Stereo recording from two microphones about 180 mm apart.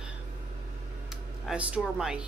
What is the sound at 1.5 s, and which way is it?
Speech, 5° right (ahead or behind).